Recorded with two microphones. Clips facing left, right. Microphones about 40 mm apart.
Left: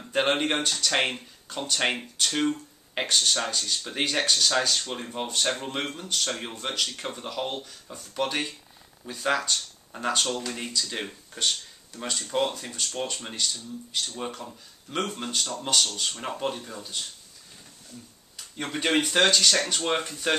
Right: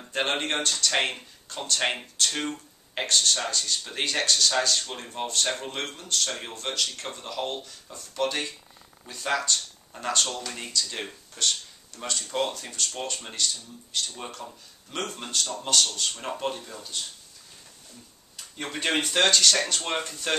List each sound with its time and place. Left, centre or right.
0.1 s speech: centre
18.3 s speech: centre